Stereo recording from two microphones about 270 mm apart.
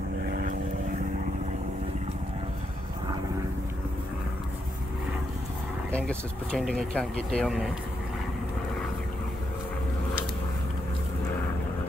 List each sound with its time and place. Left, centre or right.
0.3 s vehicle: right
5.9 s speech: centre